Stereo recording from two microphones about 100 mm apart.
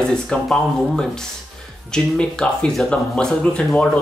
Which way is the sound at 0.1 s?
5° left (ahead or behind).